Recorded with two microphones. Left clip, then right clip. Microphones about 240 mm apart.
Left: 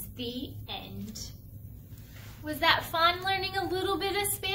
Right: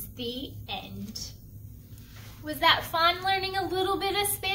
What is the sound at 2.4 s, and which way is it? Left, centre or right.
A woman's voice, centre.